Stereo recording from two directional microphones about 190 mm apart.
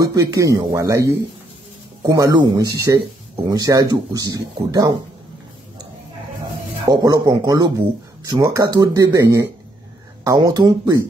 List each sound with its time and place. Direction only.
0.0 s speech: 15° right (ahead or behind)
6.9 s speech: 20° right (ahead or behind)